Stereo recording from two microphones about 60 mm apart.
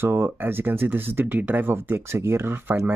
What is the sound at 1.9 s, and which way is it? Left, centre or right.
Speech, right.